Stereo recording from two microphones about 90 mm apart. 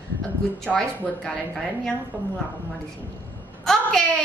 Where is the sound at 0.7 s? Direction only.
10° left (ahead or behind).